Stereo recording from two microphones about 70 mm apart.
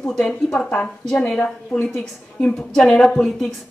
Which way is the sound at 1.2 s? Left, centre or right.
Centre.